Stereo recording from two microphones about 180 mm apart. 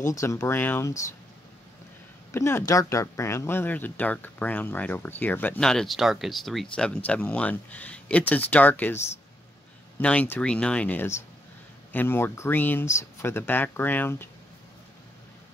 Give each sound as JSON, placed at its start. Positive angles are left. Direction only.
{"t": 0.0, "sound": "speech", "side_deg": 15}
{"t": 2.3, "sound": "speech", "side_deg": 15}